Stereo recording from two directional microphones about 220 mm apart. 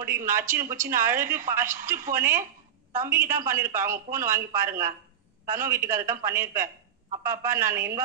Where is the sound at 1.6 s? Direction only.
35° right (ahead or behind).